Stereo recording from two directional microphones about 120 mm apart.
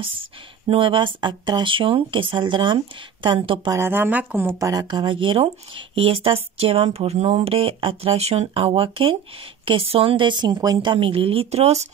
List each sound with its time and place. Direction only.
0.0 s speech: 50° right (ahead or behind)
3.7 s speech: 20° right (ahead or behind)
4.8 s speech: 40° right (ahead or behind); by 11.9 s 65° right (ahead or behind)